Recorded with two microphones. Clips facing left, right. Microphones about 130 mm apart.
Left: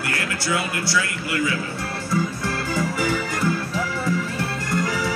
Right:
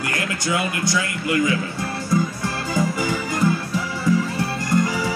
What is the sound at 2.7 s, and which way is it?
Organ, 15° right (ahead or behind).